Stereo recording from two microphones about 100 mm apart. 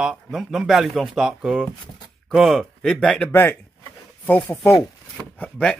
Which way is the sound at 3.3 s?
20° left (ahead or behind).